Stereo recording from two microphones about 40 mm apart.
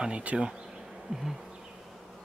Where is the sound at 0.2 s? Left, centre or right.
Right.